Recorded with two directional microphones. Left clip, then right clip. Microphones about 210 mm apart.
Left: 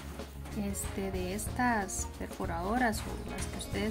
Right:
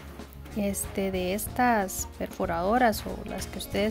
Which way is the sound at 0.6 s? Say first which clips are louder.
Right 8 dB; 50° right (ahead or behind).